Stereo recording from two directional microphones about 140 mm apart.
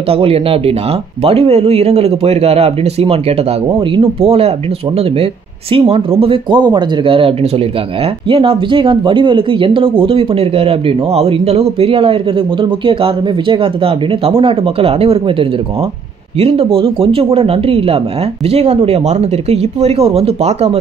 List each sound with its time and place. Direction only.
0.1 s speech: 45° right (ahead or behind)